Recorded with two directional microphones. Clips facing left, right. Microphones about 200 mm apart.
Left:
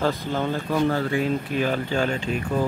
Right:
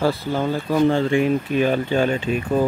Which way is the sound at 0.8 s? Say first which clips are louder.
Right 7 dB; 25° right (ahead or behind).